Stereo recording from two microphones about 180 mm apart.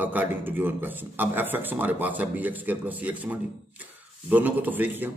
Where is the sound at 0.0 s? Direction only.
10° right (ahead or behind).